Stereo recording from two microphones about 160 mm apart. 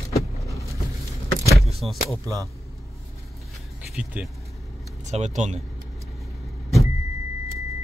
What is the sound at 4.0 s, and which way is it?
Speech, 10° right (ahead or behind).